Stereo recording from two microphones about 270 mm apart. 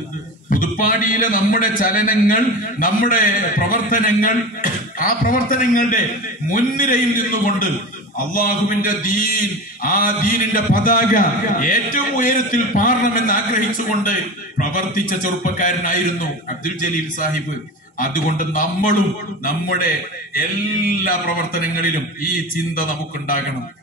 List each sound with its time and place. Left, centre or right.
0.5 s a man's voice: left
21.0 s a man's voice: left